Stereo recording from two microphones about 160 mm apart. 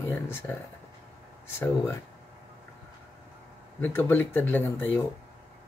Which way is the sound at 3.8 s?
10° left (ahead or behind).